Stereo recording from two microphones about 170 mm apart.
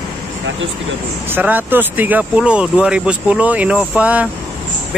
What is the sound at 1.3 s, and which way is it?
Speech, 10° right (ahead or behind).